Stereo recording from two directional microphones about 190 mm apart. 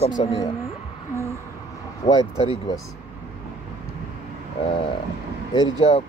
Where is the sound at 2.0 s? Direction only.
25° left (ahead or behind).